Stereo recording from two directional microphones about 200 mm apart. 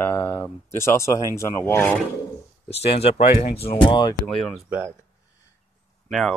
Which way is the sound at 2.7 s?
30° left (ahead or behind).